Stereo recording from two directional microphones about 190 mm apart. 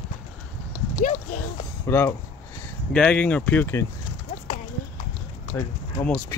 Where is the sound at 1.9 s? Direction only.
15° left (ahead or behind).